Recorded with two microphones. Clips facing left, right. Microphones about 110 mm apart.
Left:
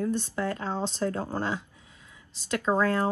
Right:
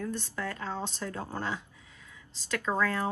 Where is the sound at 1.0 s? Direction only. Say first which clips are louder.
Left 7 dB; 45° left (ahead or behind).